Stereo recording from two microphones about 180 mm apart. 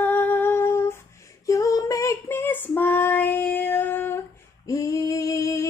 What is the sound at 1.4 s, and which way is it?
Female singing, 20° left (ahead or behind).